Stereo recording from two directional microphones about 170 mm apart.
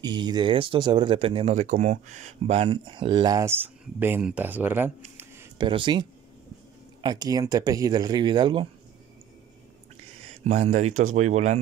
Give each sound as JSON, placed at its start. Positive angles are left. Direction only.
{"t": 0.0, "sound": "speech", "side_deg": -25}
{"t": 5.6, "sound": "speech", "side_deg": -30}
{"t": 10.3, "sound": "speech", "side_deg": -40}